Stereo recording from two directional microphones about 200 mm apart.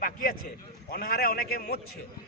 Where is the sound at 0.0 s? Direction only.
45° left (ahead or behind).